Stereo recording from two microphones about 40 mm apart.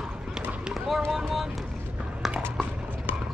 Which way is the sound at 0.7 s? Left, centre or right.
Centre.